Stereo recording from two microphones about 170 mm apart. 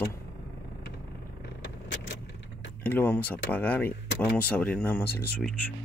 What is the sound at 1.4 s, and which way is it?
Vehicle, 90° left.